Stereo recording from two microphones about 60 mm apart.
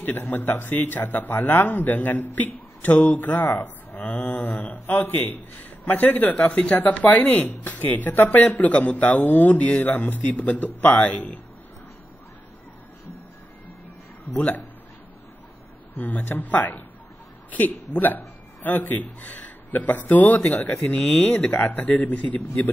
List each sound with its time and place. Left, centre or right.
0.0 s a man's voice: left
11.1 s a man's voice: centre
16.0 s speech: left
20.5 s a man's voice: centre
21.1 s speech: left